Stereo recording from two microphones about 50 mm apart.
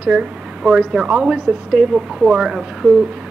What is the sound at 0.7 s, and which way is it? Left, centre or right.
Speech, centre.